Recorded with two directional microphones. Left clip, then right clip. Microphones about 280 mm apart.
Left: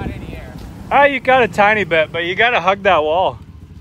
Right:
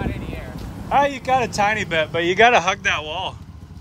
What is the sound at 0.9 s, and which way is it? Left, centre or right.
Speech, right.